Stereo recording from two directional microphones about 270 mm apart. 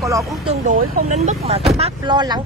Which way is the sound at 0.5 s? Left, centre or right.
Right.